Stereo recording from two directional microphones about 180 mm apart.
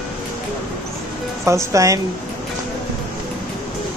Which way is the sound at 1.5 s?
15° right (ahead or behind).